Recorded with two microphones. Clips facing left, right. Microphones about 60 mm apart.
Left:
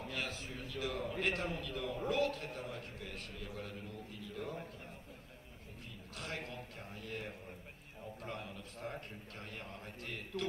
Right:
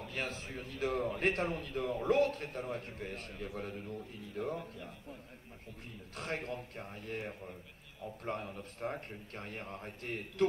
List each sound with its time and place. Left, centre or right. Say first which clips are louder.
0.1 s a man's voice: right 4 dB; right
6.1 s a man's voice: right 5 dB; right